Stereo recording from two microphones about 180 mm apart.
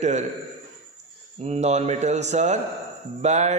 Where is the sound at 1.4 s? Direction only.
40° right (ahead or behind).